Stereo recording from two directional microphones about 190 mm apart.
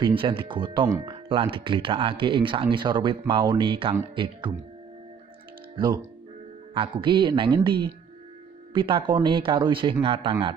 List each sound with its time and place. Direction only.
0.0 s speech: 25° right (ahead or behind)
6.7 s speech: 25° right (ahead or behind)